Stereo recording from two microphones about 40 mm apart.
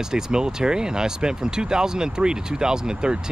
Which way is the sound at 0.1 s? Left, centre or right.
Centre.